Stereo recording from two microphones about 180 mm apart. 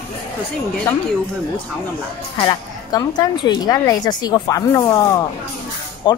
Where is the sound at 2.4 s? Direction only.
20° left (ahead or behind).